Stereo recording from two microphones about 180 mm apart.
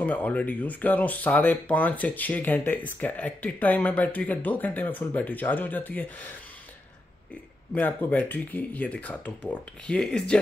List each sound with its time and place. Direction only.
0.0 s speech: 10° left (ahead or behind)
7.7 s speech: 10° left (ahead or behind)